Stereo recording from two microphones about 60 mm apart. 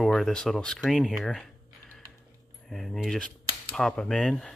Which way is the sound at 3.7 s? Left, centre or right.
Centre.